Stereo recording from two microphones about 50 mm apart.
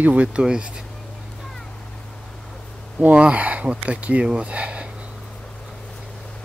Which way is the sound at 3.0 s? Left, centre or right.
Right.